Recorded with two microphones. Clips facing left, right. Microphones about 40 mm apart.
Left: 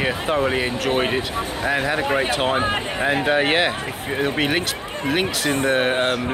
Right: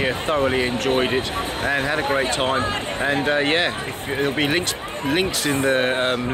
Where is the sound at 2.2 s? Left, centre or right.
Centre.